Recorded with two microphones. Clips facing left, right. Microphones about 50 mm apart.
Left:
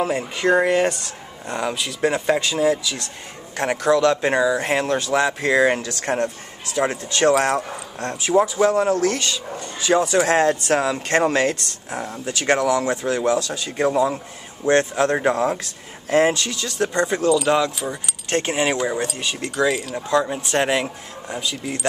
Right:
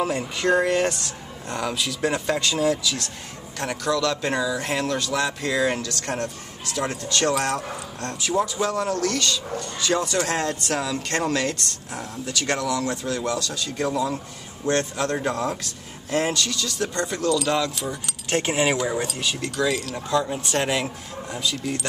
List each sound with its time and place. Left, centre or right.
0.0 s speech: centre
3.5 s speech: left
17.3 s speech: centre
19.1 s speech: centre